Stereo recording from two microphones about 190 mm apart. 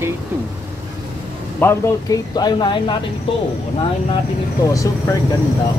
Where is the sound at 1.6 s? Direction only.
10° left (ahead or behind).